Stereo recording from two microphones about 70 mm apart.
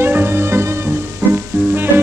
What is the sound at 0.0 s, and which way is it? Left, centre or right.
Music, right.